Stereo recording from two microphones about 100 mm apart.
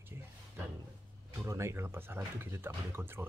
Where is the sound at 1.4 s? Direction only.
30° right (ahead or behind).